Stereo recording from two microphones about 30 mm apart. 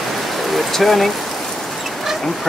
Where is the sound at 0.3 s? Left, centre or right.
Centre.